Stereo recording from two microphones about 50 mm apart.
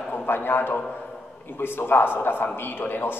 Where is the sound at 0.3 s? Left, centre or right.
Left.